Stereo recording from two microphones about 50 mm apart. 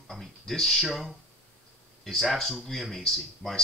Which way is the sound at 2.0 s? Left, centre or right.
Centre.